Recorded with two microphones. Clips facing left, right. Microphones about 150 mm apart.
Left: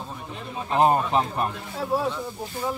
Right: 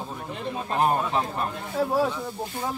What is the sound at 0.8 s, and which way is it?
Speech, 20° left (ahead or behind).